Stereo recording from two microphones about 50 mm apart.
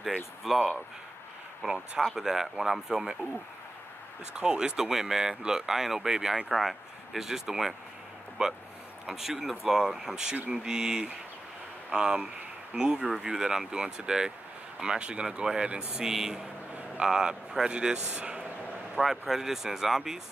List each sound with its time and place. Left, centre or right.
0.5 s speech: centre
4.4 s speech: centre
6.5 s speech: centre
8.4 s speech: centre
16.1 s speech: centre
18.9 s speech: centre